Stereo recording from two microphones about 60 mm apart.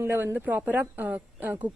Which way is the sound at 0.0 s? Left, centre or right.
Right.